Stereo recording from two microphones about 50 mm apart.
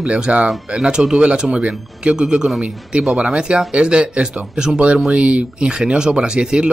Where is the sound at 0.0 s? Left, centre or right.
Centre.